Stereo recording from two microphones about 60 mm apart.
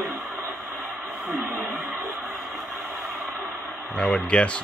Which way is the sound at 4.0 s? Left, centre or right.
Centre.